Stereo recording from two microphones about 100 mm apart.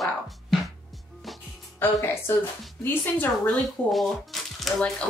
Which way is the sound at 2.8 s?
20° left (ahead or behind).